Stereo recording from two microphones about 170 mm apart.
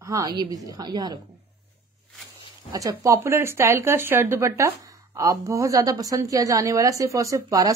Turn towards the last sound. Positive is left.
turn(degrees=-20)  # may be behind; listen again after turning